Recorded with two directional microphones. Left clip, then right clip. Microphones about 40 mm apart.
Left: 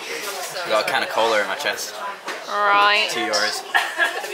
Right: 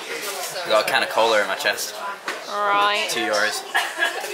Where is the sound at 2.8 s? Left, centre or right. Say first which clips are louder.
Left 3 dB; left.